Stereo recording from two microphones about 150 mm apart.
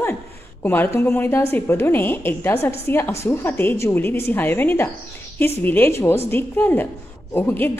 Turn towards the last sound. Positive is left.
turn(degrees=15)  # may be behind; listen again after turning